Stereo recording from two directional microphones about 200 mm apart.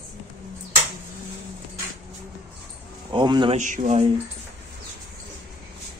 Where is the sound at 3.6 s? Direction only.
35° right (ahead or behind).